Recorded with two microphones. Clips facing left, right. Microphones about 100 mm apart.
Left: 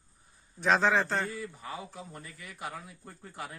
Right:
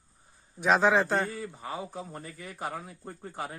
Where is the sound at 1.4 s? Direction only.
30° right (ahead or behind).